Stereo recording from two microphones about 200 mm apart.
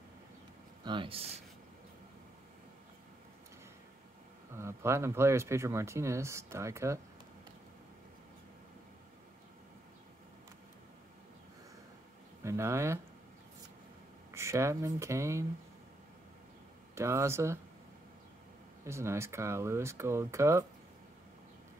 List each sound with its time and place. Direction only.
0.8 s speech: 25° right (ahead or behind)
4.6 s speech: 15° right (ahead or behind)
12.4 s speech: 15° right (ahead or behind)
14.3 s speech: 15° right (ahead or behind)
16.9 s speech: 15° right (ahead or behind)
18.9 s speech: 15° right (ahead or behind)